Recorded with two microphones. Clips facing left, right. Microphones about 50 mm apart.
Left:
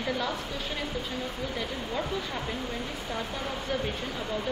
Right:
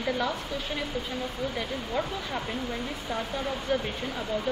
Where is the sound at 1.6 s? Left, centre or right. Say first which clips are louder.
Right 2 dB; centre.